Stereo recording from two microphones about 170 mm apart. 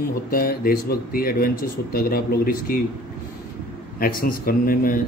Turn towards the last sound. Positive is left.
turn(degrees=55)  # may be behind; listen again after turning